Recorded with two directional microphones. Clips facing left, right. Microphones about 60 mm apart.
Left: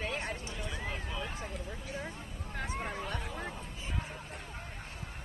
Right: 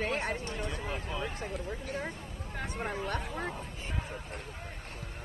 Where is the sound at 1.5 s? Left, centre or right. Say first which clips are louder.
Right 4 dB; right.